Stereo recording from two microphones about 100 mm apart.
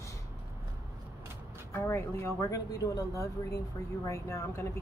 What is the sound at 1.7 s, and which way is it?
Speech, 25° left (ahead or behind).